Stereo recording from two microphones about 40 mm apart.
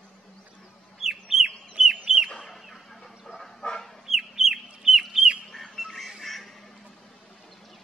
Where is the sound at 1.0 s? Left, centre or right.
Centre.